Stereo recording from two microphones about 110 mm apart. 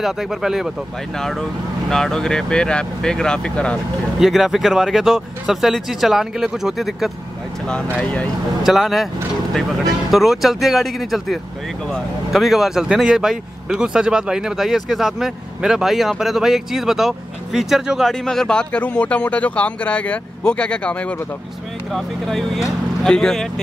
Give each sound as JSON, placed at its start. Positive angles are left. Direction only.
{"t": 0.0, "sound": "speech", "side_deg": -5}
{"t": 1.9, "sound": "speech", "side_deg": 5}
{"t": 4.2, "sound": "speech", "side_deg": 0}
{"t": 7.6, "sound": "speech", "side_deg": 10}
{"t": 8.6, "sound": "speech", "side_deg": 0}